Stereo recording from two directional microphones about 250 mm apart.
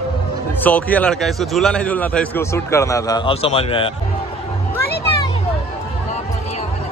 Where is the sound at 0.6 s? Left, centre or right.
Centre; by 3.9 s left.